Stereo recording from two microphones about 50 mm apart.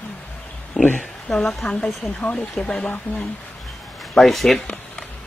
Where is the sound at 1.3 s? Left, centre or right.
Centre.